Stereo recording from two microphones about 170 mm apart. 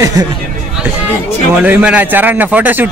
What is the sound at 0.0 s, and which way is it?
Speech, 20° right (ahead or behind).